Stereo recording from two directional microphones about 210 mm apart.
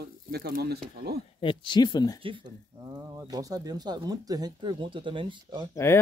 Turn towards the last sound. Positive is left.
turn(degrees=10)  # may be behind; listen again after turning